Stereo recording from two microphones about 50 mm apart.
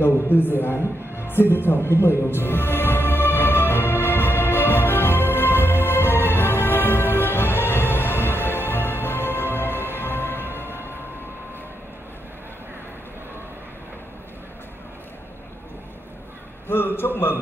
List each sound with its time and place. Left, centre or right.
0.0 s music: left
16.6 s a man's voice: left